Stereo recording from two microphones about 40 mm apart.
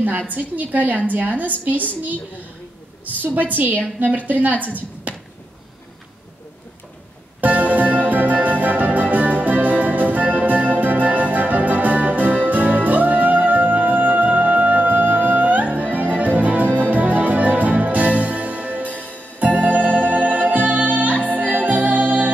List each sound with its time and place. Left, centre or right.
0.3 s a woman's voice: right
3.1 s a woman's voice: right
7.3 s music: right
18.9 s music: left
19.4 s music: right